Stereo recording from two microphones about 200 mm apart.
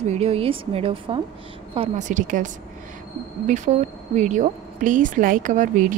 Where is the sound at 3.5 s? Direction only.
35° right (ahead or behind).